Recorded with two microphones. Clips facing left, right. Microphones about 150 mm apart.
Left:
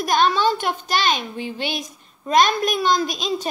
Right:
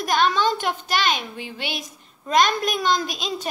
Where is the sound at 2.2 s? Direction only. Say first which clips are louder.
Left 2 dB; 20° left (ahead or behind).